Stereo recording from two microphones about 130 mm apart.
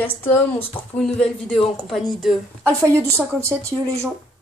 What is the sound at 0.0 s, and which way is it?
A woman's voice, 15° left (ahead or behind).